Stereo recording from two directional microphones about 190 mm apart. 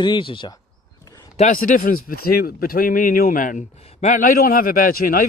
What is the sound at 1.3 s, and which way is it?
Speech, 40° left (ahead or behind).